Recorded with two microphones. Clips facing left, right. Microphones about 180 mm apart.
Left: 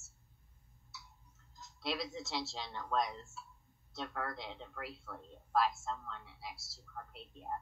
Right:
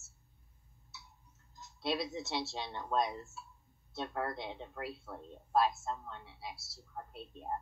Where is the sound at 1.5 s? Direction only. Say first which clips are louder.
Right 4 dB; 25° right (ahead or behind).